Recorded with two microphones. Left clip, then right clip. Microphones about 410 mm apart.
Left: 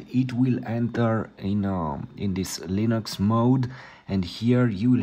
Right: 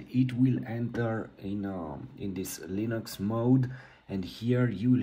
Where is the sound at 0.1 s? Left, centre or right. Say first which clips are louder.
Left 3 dB; centre.